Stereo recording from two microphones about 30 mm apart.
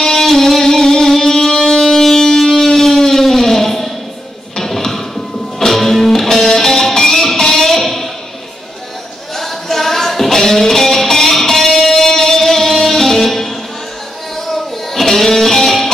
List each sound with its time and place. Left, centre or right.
0.0 s music: centre
2.5 s music: centre
4.6 s a sound: centre
5.7 s music: centre
7.7 s a sound: centre
9.3 s music: centre